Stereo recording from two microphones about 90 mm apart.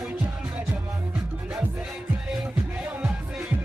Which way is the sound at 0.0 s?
15° right (ahead or behind).